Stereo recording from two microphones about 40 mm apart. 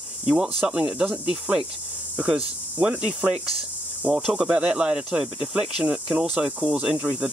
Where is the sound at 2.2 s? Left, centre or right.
Right.